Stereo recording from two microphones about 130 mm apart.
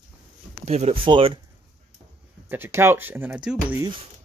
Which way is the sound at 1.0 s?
40° right (ahead or behind).